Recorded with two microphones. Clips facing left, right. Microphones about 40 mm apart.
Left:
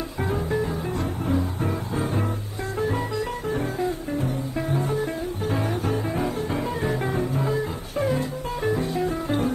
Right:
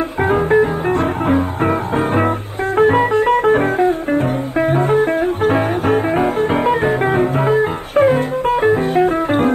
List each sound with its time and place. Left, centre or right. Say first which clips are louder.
0.2 s music: right 13 dB; right